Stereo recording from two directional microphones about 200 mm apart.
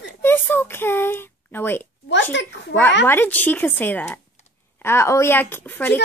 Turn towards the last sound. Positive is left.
turn(degrees=10)  # may be behind; listen again after turning